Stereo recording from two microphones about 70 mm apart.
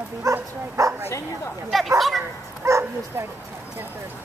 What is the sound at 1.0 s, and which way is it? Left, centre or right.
Speech, left.